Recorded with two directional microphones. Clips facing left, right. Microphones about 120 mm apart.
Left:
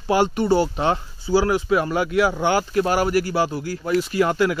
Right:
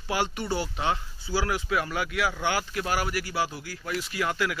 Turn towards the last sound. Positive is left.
turn(degrees=35)  # may be behind; listen again after turning